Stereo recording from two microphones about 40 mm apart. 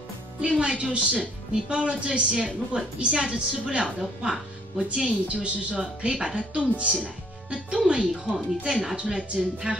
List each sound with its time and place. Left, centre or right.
0.4 s a woman's voice: right
4.7 s a woman's voice: right
5.8 s a woman's voice: centre